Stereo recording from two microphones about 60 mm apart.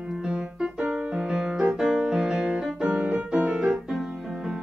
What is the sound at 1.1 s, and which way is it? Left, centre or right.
Music, centre.